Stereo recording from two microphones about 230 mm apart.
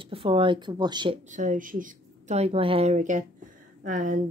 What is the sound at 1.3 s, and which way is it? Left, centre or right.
Speech, right.